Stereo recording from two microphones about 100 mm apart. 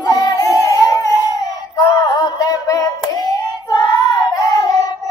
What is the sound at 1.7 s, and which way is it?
Hands, 35° left (ahead or behind).